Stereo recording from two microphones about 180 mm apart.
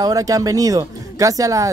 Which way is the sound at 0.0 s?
20° right (ahead or behind).